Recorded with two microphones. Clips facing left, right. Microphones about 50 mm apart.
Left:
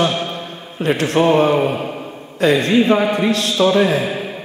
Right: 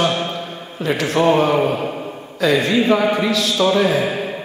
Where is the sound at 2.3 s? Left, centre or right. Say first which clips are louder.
Left 2 dB; left.